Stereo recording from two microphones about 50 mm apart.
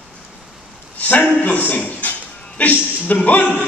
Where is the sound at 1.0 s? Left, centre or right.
Left.